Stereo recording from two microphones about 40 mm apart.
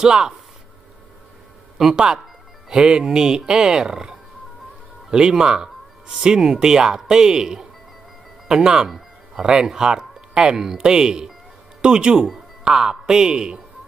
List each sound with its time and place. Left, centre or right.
0.0 s speech: centre
1.8 s speech: centre